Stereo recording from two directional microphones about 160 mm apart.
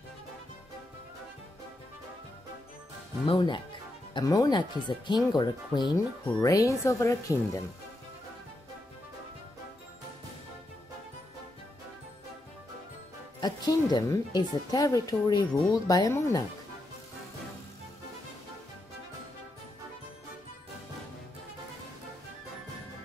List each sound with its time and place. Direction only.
3.3 s a woman's voice: 30° left (ahead or behind)
13.4 s a woman's voice: 25° left (ahead or behind)